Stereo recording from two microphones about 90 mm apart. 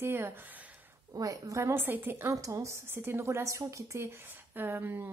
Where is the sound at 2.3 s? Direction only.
40° right (ahead or behind).